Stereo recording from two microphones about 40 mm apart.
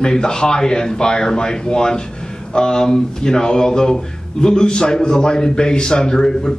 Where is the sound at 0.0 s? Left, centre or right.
Centre.